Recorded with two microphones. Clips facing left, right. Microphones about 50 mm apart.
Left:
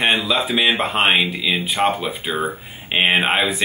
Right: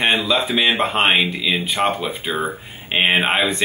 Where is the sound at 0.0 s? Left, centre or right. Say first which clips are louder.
Even; centre.